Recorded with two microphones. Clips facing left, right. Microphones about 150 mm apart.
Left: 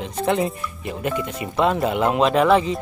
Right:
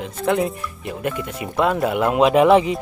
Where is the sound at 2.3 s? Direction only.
15° right (ahead or behind).